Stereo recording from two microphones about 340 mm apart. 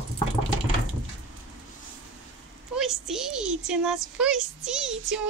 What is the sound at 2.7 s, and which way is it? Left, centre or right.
A child's voice, centre.